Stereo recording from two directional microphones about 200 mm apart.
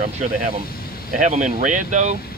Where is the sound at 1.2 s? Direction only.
40° right (ahead or behind).